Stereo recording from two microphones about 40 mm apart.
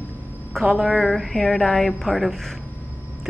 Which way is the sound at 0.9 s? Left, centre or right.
Centre.